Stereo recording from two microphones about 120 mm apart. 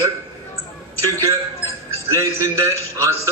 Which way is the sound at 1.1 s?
25° right (ahead or behind).